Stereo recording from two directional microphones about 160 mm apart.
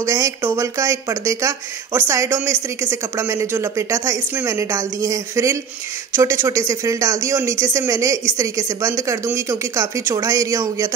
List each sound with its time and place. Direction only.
0.0 s speech: 20° right (ahead or behind)